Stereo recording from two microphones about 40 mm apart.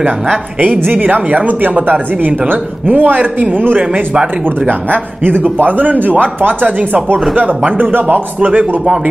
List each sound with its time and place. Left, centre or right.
0.8 s speech: right